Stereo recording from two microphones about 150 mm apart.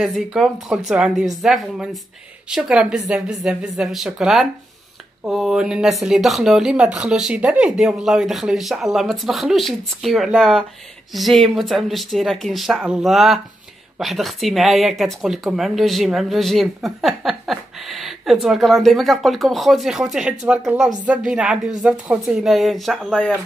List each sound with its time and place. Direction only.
0.0 s speech: 5° right (ahead or behind)